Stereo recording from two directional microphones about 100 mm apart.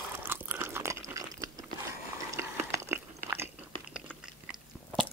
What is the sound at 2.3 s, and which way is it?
Chewing, 30° right (ahead or behind).